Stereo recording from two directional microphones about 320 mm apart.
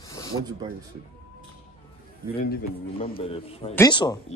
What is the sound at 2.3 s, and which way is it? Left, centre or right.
Speech, left.